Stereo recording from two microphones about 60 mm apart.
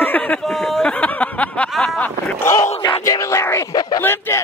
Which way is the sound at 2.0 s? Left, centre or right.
Left.